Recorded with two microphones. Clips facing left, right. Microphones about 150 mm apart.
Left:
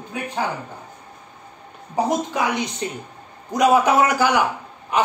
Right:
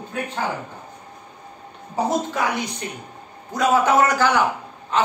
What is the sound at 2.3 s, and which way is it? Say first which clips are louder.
A woman's voice: left 1 dB; 20° left (ahead or behind).